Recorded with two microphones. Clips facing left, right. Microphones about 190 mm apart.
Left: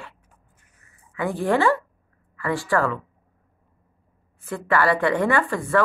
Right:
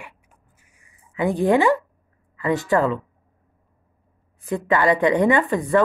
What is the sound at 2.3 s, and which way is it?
Speech, 20° right (ahead or behind).